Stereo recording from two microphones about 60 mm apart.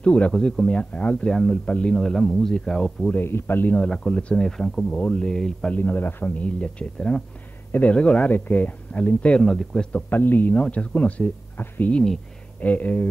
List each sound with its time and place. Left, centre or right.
0.0 s speech: left
3.3 s speech: left
3.7 s speech: centre
5.7 s speech: left
6.4 s speech: centre
7.0 s speech: centre
7.9 s speech: left
9.4 s speech: centre
9.9 s speech: left
11.6 s speech: left
12.5 s speech: left